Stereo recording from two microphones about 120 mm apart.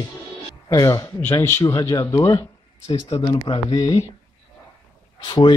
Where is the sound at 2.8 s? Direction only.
55° left (ahead or behind).